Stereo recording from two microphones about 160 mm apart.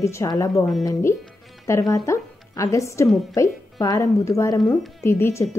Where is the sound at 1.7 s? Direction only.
20° left (ahead or behind).